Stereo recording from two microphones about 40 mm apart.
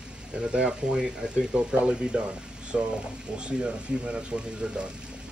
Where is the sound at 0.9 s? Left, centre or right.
Centre.